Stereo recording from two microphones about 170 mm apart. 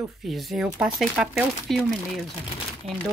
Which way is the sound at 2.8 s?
40° right (ahead or behind).